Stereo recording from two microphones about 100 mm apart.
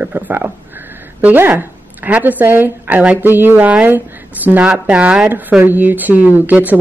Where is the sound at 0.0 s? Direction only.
20° right (ahead or behind).